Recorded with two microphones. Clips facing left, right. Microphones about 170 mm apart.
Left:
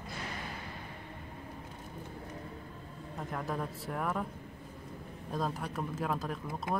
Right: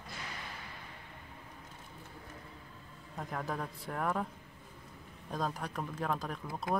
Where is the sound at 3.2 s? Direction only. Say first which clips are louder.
Left 1 dB; centre (ahead or behind).